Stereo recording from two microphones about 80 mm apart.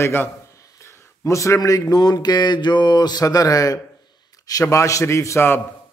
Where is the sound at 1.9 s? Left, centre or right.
Left.